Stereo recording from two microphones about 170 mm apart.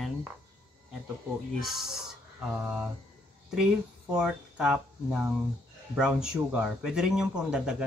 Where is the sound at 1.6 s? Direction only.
Centre (ahead or behind).